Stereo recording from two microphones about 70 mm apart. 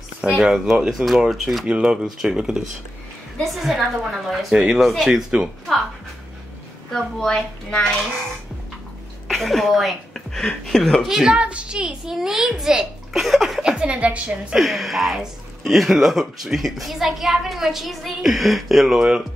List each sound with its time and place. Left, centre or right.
0.2 s speech: centre
1.7 s speech: centre
4.6 s speech: centre
7.2 s a woman's voice: centre
9.3 s speech: centre
11.1 s speech: centre
13.6 s a woman's voice: centre
14.5 s speech: centre